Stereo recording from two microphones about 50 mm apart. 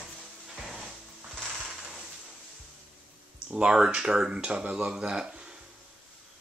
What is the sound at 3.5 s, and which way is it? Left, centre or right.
Speech, centre.